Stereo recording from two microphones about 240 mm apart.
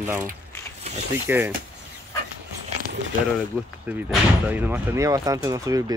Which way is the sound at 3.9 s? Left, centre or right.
Centre.